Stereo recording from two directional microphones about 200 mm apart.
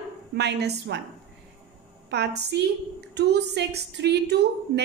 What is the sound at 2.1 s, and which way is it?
A woman's voice, 55° right (ahead or behind).